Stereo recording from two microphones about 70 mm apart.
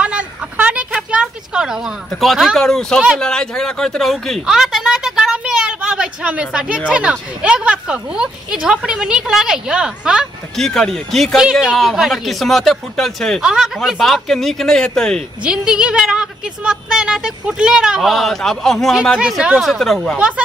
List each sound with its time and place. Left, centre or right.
0.0 s a sound: centre
2.0 s speech: centre
4.5 s a sound: centre
6.9 s a woman's voice: centre
10.5 s speech: centre
13.4 s a woman's voice: centre
15.4 s a woman's voice: centre
19.1 s a woman's voice: centre
20.2 s a woman's voice: centre